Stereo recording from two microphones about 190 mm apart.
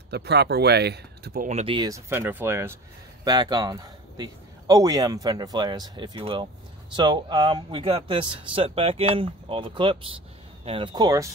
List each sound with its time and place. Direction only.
0.1 s speech: 60° right (ahead or behind)
1.5 s speech: 35° right (ahead or behind)
1.8 s a man's voice: 15° right (ahead or behind)